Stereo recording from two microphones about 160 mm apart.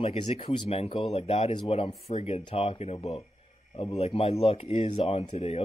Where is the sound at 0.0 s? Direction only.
40° left (ahead or behind).